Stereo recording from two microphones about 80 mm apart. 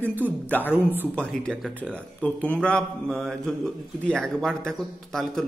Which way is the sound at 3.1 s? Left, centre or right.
Centre.